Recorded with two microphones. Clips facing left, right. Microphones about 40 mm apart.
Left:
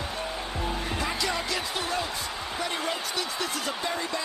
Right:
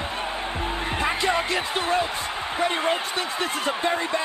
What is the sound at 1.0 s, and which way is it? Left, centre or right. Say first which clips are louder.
Speech: right 8 dB; right.